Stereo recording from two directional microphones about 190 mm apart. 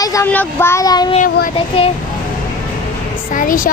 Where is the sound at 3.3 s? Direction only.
45° left (ahead or behind).